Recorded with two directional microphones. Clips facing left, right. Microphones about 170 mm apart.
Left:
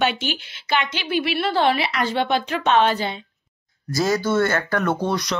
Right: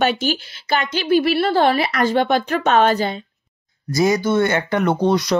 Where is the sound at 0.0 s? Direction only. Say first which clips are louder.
Right 4 dB; 40° right (ahead or behind).